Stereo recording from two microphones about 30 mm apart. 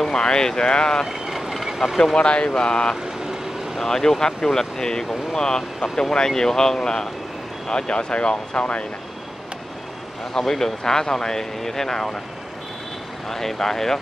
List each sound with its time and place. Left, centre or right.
0.0 s speech: left
1.0 s vehicle: centre
2.1 s speech: left
3.8 s speech: centre; by 8.8 s left
10.3 s speech: centre
13.3 s speech: centre